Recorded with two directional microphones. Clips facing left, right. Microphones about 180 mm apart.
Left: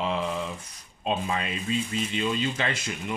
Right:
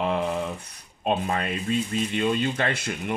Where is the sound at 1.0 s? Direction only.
55° right (ahead or behind).